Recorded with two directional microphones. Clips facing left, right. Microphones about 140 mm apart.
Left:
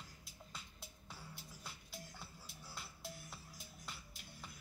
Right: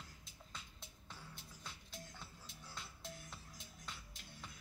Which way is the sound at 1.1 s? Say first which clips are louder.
Left 1 dB; 10° left (ahead or behind).